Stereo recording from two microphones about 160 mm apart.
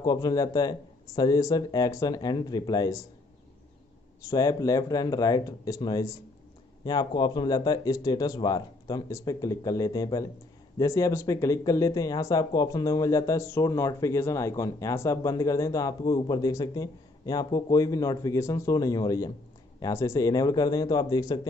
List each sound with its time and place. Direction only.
0.0 s speech: 25° left (ahead or behind)
4.3 s speech: 25° left (ahead or behind)